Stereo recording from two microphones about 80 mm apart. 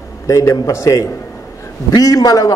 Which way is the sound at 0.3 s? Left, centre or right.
Left.